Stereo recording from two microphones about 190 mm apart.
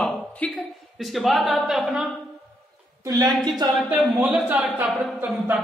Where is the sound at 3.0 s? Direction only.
20° right (ahead or behind).